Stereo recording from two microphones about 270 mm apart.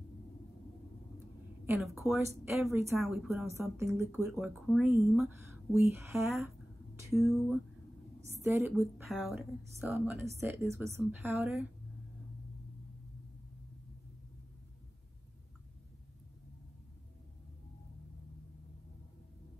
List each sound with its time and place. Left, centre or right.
1.7 s a woman's voice: centre
8.4 s a woman's voice: centre